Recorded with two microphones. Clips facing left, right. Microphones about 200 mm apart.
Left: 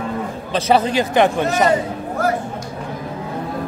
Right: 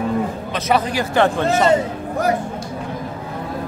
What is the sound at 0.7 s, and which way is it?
Speech, 25° left (ahead or behind).